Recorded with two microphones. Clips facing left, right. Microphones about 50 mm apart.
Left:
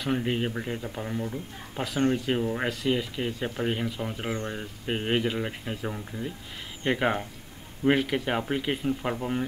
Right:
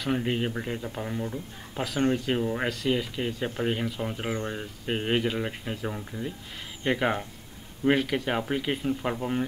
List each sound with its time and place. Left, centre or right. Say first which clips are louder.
0.0 s a man's voice: even; centre